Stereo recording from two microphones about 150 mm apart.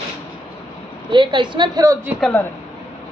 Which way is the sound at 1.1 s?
30° right (ahead or behind).